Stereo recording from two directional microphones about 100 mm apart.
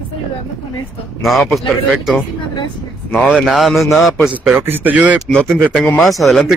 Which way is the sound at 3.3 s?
5° right (ahead or behind).